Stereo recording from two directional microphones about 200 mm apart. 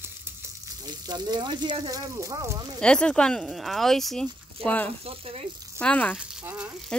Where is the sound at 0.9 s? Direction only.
20° right (ahead or behind).